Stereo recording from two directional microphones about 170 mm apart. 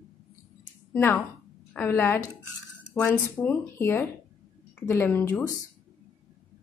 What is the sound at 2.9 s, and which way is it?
Speech, 15° left (ahead or behind).